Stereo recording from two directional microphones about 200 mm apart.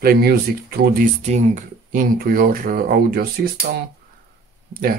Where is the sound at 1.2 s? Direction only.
35° right (ahead or behind).